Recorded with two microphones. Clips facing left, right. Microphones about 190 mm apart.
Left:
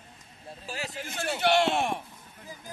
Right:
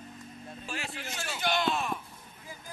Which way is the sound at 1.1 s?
60° left (ahead or behind).